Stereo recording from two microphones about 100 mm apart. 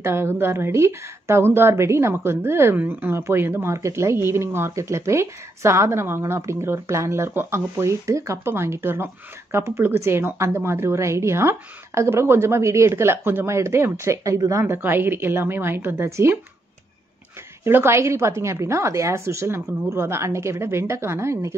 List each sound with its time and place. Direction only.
0.0 s a woman's voice: 25° right (ahead or behind)
14.8 s a woman's voice: 20° right (ahead or behind)
17.6 s a woman's voice: 25° right (ahead or behind)